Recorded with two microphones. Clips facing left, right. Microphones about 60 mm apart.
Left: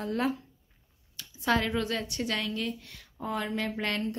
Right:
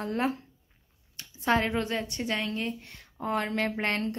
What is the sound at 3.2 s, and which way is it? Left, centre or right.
Speech, right.